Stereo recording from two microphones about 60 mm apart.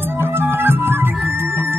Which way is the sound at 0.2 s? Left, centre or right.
Right.